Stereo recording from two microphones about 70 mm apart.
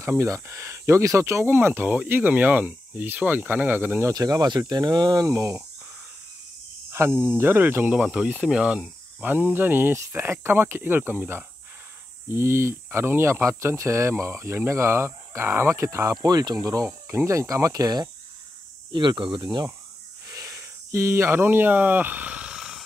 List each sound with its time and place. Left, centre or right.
0.0 s speech: right
4.1 s speech: right
6.9 s speech: right; by 8.8 s centre
9.2 s speech: right
16.8 s speech: right
18.9 s speech: right
20.2 s wheeze: right
20.6 s a sound: right; by 22.8 s centre